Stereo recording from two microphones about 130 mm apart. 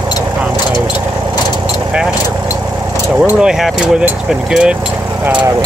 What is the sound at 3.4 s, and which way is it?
Speech, 5° right (ahead or behind).